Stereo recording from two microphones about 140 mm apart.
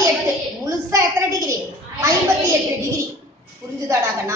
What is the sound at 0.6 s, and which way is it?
Speech, 20° right (ahead or behind).